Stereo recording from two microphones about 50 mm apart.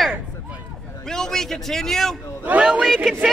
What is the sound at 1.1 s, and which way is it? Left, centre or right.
Speech, centre.